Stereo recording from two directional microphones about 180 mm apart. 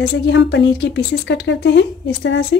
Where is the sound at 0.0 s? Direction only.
80° left.